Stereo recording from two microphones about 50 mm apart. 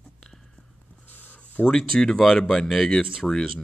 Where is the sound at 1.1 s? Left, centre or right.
Left.